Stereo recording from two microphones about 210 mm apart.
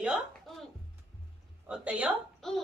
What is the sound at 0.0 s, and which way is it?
Music, 5° right (ahead or behind).